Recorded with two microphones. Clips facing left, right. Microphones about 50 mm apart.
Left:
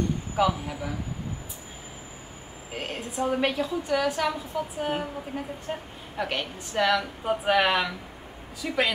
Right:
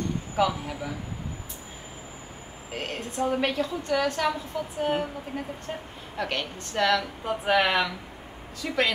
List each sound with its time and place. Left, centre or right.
0.4 s a woman's voice: centre
2.7 s a woman's voice: centre